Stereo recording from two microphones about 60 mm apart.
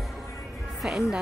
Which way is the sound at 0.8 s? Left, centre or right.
Centre.